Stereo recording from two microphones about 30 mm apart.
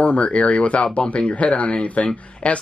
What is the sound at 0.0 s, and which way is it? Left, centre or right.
A man's voice, left.